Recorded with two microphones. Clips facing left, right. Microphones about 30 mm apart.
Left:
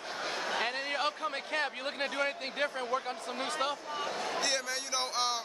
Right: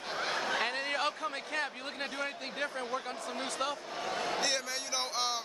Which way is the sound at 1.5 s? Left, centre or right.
Left.